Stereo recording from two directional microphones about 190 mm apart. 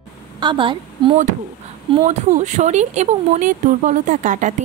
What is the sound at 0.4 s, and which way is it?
A woman's voice, 25° right (ahead or behind).